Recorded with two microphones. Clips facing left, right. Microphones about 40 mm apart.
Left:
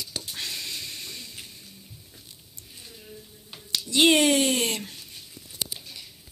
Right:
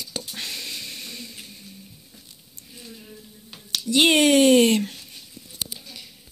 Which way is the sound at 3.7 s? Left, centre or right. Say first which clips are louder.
Right 1 dB; right.